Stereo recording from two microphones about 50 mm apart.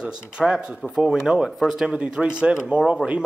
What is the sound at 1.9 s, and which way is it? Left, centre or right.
Speech, centre.